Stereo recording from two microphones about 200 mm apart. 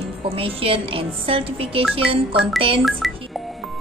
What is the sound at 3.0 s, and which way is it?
Music, centre (ahead or behind).